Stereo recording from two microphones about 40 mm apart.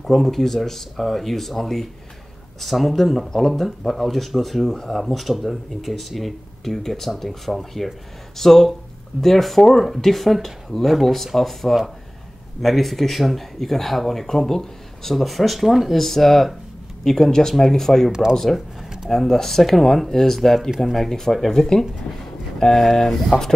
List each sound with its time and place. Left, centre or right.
0.0 s speech: centre
16.0 s speech: centre